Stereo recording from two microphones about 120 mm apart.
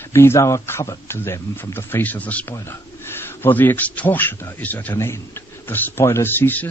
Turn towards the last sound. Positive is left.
turn(degrees=15)  # may be behind; listen again after turning